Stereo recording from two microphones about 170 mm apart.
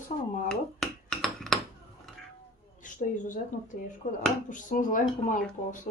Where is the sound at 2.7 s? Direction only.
50° left (ahead or behind).